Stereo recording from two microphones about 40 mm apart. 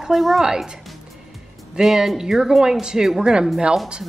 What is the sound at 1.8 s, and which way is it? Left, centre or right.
Speech, centre.